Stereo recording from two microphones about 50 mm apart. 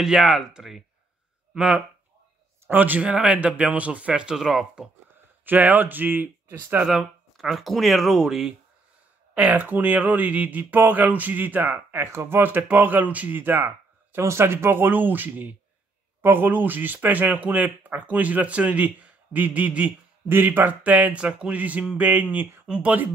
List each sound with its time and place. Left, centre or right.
0.0 s speech: centre
2.7 s speech: right
3.0 s speech: right
4.1 s speech: centre
4.4 s speech: centre
5.4 s speech: right
6.9 s speech: centre
9.3 s speech: right
12.1 s speech: right
12.4 s speech: right
13.4 s speech: right
14.2 s speech: right
20.2 s speech: right